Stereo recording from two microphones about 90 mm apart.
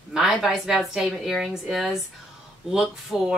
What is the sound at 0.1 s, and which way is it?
Speech, 5° right (ahead or behind).